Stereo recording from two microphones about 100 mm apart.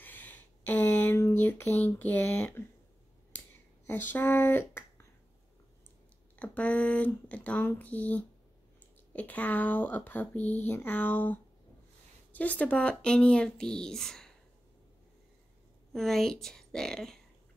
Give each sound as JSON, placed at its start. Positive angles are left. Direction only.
{"t": 0.0, "sound": "a sound", "side_deg": 15}
{"t": 6.3, "sound": "speech", "side_deg": 15}
{"t": 15.9, "sound": "a woman's voice", "side_deg": 5}